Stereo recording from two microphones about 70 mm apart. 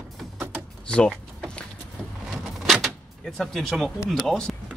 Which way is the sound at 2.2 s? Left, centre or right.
Centre.